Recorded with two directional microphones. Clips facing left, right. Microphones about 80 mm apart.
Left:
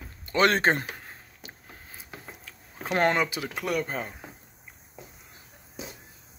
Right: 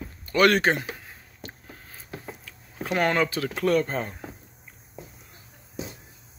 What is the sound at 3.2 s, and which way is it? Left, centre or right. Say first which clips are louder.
Speech: right 5 dB; centre.